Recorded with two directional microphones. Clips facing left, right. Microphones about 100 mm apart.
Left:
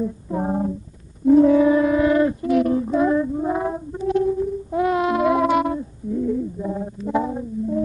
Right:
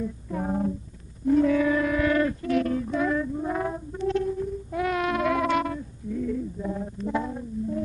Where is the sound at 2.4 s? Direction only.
20° left (ahead or behind).